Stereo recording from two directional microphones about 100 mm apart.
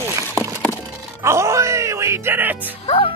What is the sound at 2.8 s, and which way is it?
Speech, 80° left.